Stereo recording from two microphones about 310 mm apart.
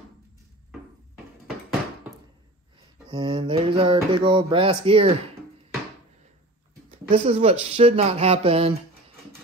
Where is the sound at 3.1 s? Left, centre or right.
Centre.